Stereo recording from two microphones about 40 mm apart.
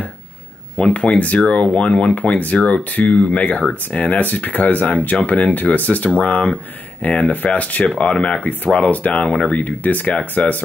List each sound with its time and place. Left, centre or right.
0.7 s speech: left
2.1 s speech: left
4.0 s speech: left
8.7 s speech: left